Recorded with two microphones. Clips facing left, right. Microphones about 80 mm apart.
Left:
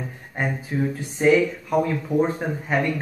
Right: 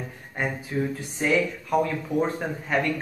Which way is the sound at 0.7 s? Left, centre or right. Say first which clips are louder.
Left 2 dB; centre.